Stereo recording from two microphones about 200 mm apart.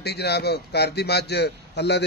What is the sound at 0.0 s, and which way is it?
A man's voice, 55° left (ahead or behind).